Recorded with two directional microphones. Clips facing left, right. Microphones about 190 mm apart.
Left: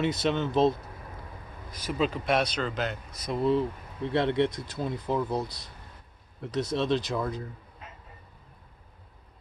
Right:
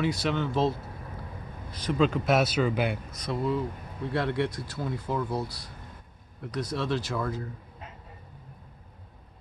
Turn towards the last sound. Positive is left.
turn(degrees=20)  # may be behind; listen again after turning